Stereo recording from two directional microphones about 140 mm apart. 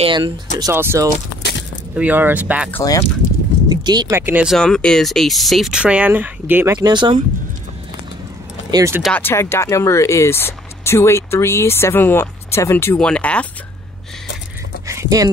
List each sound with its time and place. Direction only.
0.0 s speech: 35° right (ahead or behind)
0.6 s speech: 20° right (ahead or behind)
2.8 s speech: 25° left (ahead or behind)
3.6 s a sound: 30° right (ahead or behind)
4.1 s speech: 15° right (ahead or behind)
4.5 s speech: 5° left (ahead or behind); by 6.8 s 15° right (ahead or behind)
6.8 s speech: 30° right (ahead or behind)
8.6 s vehicle: 25° right (ahead or behind)
9.1 s speech: 15° left (ahead or behind)
14.9 s a sound: 25° right (ahead or behind)